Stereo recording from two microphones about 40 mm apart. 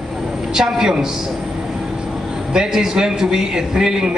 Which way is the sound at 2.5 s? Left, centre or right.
Centre.